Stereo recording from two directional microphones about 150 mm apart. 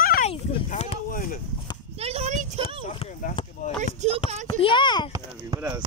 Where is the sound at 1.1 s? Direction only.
65° left (ahead or behind).